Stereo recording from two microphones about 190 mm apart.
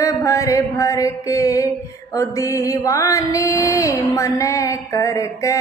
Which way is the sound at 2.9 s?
15° left (ahead or behind).